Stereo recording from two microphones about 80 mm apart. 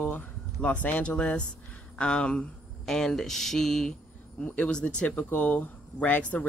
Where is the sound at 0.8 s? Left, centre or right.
Centre.